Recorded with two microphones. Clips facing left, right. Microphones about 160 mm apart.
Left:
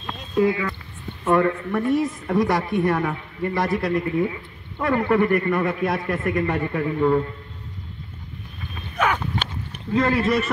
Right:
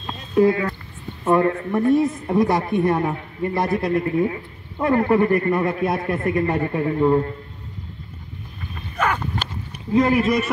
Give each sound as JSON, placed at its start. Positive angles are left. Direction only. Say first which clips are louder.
{"t": 0.5, "sound": "speech", "louder": "right 3 dB", "side_deg": -50}
{"t": 1.2, "sound": "a man's voice", "louder": "right 1 dB", "side_deg": -30}
{"t": 8.9, "sound": "a sound", "louder": "even", "side_deg": 0}
{"t": 9.9, "sound": "speech", "louder": "right 3 dB", "side_deg": -15}